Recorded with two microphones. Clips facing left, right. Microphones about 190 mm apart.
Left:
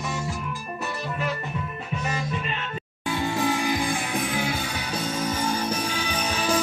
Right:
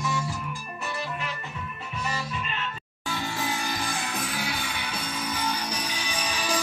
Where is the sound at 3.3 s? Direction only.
55° left (ahead or behind).